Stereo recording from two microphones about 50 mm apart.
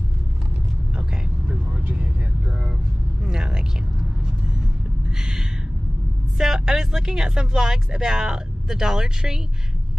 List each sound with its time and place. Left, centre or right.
1.5 s vehicle: right
3.3 s a sound: centre
6.3 s speech: centre